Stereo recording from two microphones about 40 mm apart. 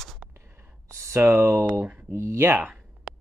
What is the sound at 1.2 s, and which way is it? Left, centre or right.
Speech, right.